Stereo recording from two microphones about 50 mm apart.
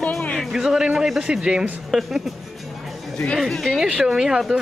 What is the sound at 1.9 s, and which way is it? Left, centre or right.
Speech, centre.